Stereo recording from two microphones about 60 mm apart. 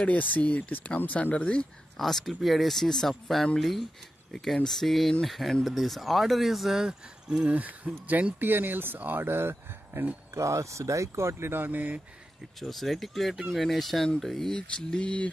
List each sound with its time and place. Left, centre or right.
0.0 s speech: left
2.0 s speech: centre; by 10.0 s right
10.3 s speech: right
12.5 s speech: centre